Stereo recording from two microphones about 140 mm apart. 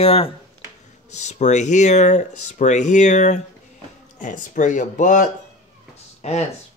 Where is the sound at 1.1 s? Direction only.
55° left (ahead or behind).